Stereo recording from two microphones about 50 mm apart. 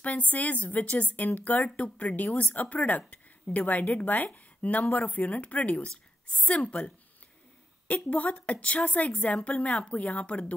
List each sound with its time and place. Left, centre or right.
0.0 s a woman's voice: left
7.9 s a woman's voice: left